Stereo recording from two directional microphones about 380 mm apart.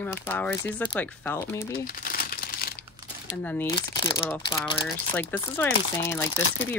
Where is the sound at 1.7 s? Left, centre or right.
Left.